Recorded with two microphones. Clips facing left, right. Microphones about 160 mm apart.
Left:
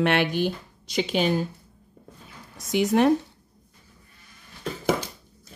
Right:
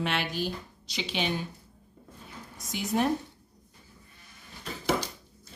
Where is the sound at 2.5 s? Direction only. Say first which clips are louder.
Left 8 dB; 75° left (ahead or behind).